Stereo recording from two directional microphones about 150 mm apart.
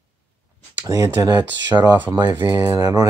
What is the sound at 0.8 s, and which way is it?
Speech, 20° right (ahead or behind).